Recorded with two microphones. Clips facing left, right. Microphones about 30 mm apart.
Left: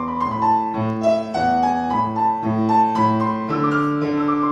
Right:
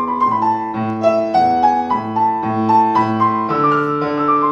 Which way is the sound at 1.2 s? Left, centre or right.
Right.